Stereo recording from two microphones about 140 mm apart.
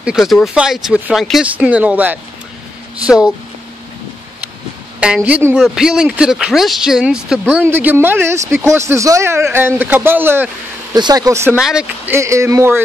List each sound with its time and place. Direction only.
0.0 s speech: 5° right (ahead or behind)
5.0 s speech: 10° right (ahead or behind)
11.0 s a man's voice: 30° right (ahead or behind)
11.5 s speech: 5° right (ahead or behind)
12.2 s a man's voice: 20° right (ahead or behind)